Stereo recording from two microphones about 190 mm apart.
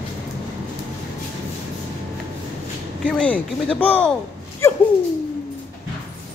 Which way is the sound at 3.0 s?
5° left (ahead or behind).